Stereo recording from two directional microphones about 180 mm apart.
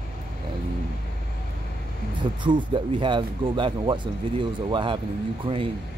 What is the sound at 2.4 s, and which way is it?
Speech, 25° right (ahead or behind).